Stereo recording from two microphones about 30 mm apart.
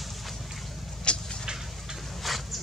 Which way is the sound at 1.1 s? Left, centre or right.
Left.